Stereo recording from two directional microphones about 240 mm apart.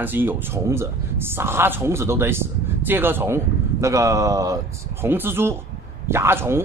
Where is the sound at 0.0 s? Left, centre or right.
Centre.